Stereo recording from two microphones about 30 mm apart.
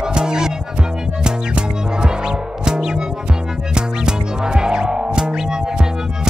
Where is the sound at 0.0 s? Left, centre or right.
Right.